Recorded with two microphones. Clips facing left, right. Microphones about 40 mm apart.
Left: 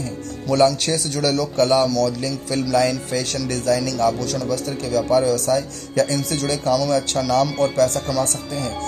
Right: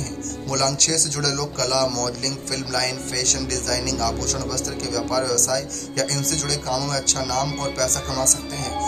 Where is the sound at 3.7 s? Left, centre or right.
Left.